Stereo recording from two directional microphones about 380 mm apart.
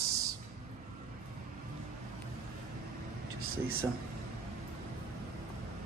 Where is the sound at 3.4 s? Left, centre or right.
Right.